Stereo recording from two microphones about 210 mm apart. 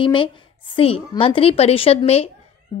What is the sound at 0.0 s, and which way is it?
A woman's voice, 25° left (ahead or behind).